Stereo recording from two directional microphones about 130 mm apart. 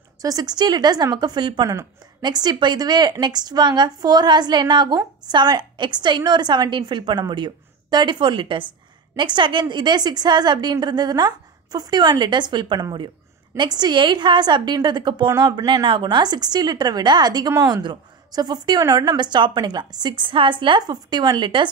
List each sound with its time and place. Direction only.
0.2 s a woman's voice: 30° right (ahead or behind)